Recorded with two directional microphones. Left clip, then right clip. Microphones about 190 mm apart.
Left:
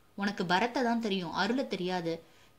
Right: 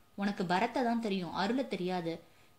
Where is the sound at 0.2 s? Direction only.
15° left (ahead or behind).